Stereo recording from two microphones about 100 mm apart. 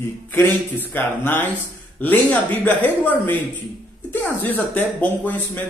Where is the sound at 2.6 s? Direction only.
15° left (ahead or behind).